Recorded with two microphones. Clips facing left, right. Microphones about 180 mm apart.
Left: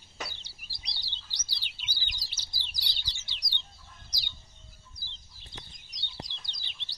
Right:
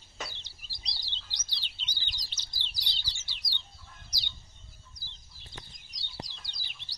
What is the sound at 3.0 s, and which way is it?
Chicken, 15° left (ahead or behind).